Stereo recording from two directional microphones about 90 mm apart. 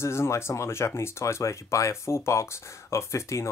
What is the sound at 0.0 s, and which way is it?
Speech, 30° left (ahead or behind).